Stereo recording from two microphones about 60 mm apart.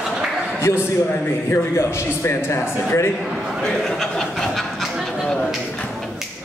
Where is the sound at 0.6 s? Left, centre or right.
Left.